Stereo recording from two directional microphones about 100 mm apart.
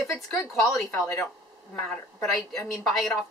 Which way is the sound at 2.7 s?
Centre (ahead or behind).